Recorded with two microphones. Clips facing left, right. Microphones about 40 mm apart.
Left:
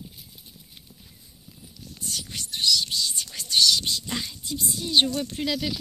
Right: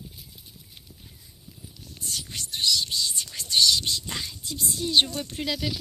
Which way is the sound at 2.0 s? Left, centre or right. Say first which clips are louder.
Even; centre.